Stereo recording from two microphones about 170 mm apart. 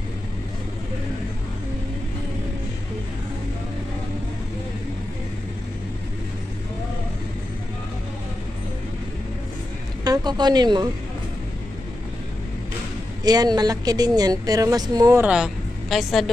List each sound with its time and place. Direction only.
10.0 s speech: 25° right (ahead or behind)
13.2 s speech: 25° right (ahead or behind)
15.2 s speech: 5° right (ahead or behind)